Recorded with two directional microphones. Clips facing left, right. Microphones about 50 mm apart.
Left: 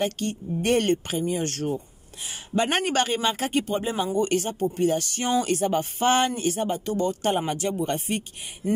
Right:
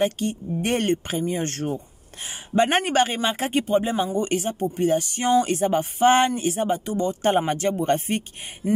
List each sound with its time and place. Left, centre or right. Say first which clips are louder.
0.0 s speech: right 3 dB; centre
1.1 s speech: right 1 dB; right
7.2 s speech: right 4 dB; right